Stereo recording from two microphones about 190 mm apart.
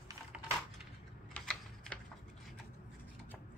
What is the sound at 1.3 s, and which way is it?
Typing, 5° left (ahead or behind).